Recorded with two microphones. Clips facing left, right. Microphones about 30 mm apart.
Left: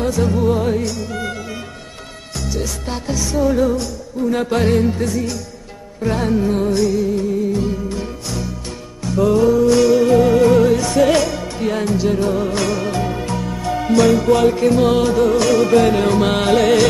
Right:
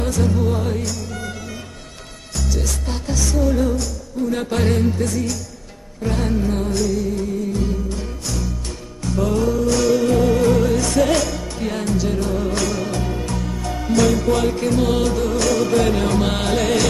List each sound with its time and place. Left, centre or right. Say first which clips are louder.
0.2 s music: left 4 dB; centre
2.5 s music: left 3 dB; centre